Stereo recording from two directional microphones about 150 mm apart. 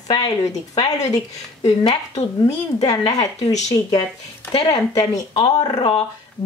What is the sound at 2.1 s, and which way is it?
A woman's voice, 45° left (ahead or behind).